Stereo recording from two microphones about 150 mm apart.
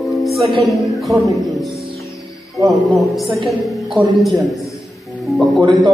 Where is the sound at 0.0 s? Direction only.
Centre (ahead or behind).